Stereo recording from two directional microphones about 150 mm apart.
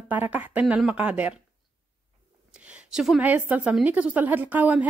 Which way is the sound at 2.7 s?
5° right (ahead or behind).